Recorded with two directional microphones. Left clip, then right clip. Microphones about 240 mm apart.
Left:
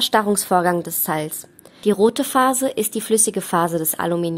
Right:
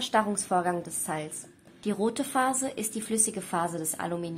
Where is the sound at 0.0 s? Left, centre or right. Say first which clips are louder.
Left 9 dB; left.